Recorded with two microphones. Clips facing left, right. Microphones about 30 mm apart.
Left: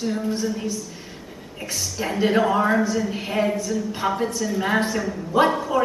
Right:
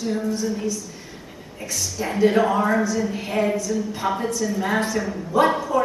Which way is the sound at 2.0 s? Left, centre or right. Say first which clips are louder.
Right 2 dB; centre.